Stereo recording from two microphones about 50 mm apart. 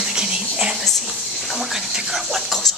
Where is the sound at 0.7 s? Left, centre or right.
Centre.